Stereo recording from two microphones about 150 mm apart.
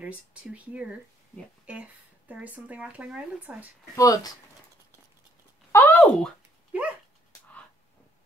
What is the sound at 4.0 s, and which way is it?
Speech, 25° left (ahead or behind).